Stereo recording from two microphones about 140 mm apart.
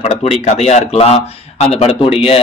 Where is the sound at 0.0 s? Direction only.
50° left (ahead or behind).